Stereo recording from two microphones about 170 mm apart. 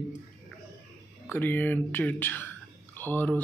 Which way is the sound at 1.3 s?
10° left (ahead or behind).